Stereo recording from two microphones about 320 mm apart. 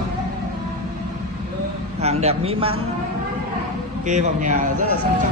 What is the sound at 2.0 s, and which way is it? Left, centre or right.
Speech, centre.